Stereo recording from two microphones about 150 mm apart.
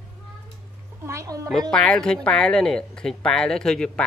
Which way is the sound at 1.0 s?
20° right (ahead or behind).